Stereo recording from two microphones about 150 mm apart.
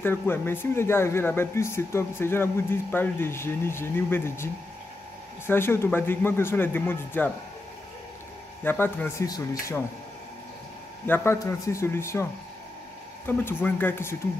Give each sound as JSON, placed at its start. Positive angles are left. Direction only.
{"t": 0.0, "sound": "speech", "side_deg": 15}
{"t": 5.5, "sound": "speech", "side_deg": 15}
{"t": 8.6, "sound": "speech", "side_deg": 15}
{"t": 11.1, "sound": "speech", "side_deg": 15}
{"t": 13.3, "sound": "speech", "side_deg": 15}